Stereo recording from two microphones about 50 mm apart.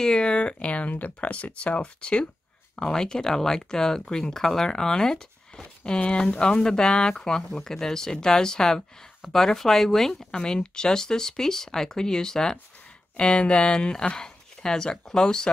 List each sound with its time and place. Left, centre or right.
0.0 s speech: centre
10.3 s speech: centre